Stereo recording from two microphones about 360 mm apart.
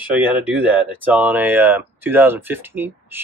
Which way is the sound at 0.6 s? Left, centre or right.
Centre.